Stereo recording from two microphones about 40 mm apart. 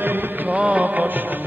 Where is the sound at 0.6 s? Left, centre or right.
Right.